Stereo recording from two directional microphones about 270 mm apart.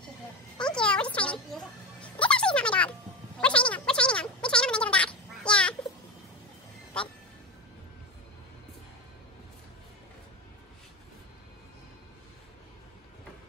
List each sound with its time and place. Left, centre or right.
0.6 s a sound: centre
1.1 s music: centre
7.0 s music: centre